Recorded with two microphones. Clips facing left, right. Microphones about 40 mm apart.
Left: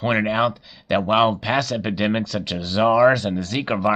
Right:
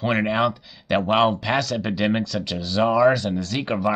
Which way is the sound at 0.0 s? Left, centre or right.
Centre.